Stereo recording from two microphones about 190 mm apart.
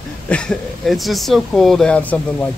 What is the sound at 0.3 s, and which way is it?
Speech, 5° left (ahead or behind).